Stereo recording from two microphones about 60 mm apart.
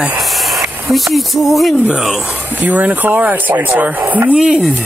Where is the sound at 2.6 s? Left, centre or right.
Right.